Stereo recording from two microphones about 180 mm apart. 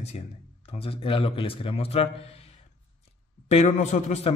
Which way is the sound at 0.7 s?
30° left (ahead or behind).